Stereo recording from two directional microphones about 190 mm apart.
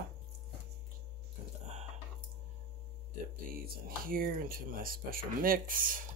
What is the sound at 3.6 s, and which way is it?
Speech, 50° right (ahead or behind).